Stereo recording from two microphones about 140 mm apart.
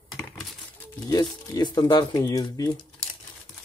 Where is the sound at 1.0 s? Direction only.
30° left (ahead or behind).